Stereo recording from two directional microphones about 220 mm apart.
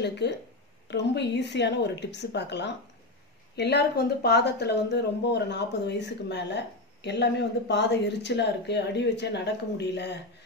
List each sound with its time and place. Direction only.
0.0 s speech: 50° left (ahead or behind)